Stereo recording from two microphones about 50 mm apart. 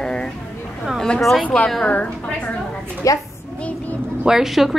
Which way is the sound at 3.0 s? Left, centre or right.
Left.